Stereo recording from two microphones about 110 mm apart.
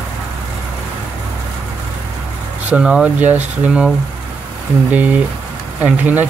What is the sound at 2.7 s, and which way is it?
Speech, 10° right (ahead or behind).